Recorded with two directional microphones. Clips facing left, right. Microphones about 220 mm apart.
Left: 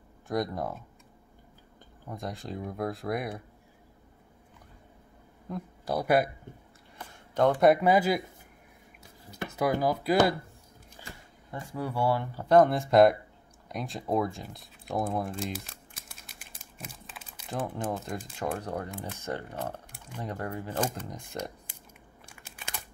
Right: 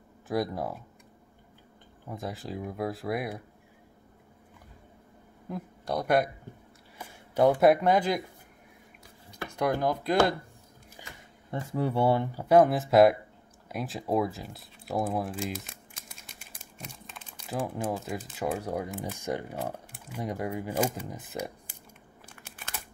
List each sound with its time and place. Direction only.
0.3 s speech: 5° right (ahead or behind)
2.0 s speech: 5° right (ahead or behind)
5.5 s speech: 5° left (ahead or behind)
7.0 s a sound: 10° right (ahead or behind)
7.6 s speech: 5° left (ahead or behind)
9.5 s speech: 5° left (ahead or behind)
11.5 s speech: 25° right (ahead or behind)
12.4 s speech: 5° right (ahead or behind)
16.7 s crumpling: 5° left (ahead or behind)
17.6 s speech: 5° right (ahead or behind)